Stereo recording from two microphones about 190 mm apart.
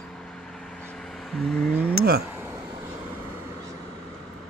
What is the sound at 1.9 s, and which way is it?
Speech, 55° right (ahead or behind).